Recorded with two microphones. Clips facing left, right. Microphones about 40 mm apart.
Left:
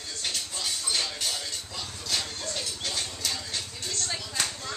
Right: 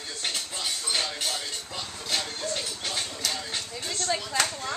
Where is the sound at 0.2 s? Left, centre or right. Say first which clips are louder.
Right 1 dB; centre.